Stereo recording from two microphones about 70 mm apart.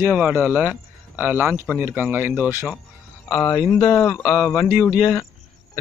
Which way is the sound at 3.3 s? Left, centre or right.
Left.